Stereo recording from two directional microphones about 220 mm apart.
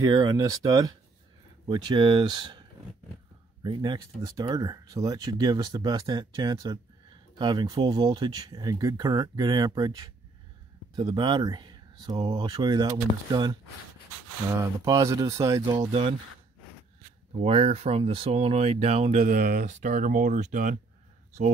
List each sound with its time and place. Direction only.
0.0 s speech: 20° right (ahead or behind)
3.6 s speech: 20° right (ahead or behind)
17.4 s speech: 25° right (ahead or behind)